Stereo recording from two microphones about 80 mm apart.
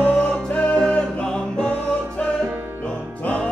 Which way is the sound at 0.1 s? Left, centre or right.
Centre.